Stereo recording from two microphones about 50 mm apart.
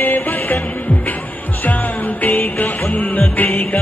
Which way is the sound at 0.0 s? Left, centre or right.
Left.